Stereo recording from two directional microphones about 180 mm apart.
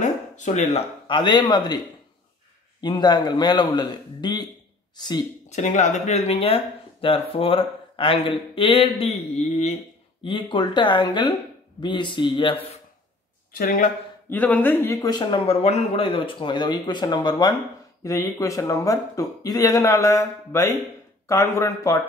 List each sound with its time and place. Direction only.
0.0 s a sound: 40° left (ahead or behind)
1.0 s speech: 25° left (ahead or behind)
2.8 s speech: 25° left (ahead or behind)
5.5 s speech: 40° left (ahead or behind)
10.2 s speech: 25° left (ahead or behind)
13.5 s speech: 50° left (ahead or behind)
14.3 s speech: 10° left (ahead or behind)